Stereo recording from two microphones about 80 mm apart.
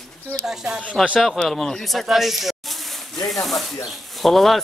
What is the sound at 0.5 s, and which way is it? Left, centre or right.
Speech, centre.